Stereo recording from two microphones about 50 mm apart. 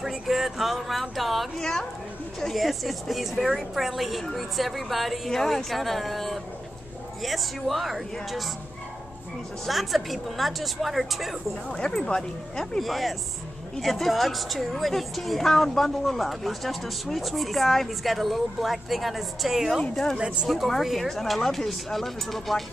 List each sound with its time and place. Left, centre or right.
0.0 s a woman's voice: centre
1.6 s speech: centre
2.5 s a woman's voice: centre
9.7 s a woman's voice: centre
11.7 s a woman's voice: centre
19.8 s speech: centre
20.2 s speech: centre
20.4 s a woman's voice: centre